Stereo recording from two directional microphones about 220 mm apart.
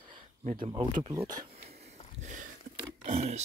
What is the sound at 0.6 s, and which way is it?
Speech, 20° right (ahead or behind).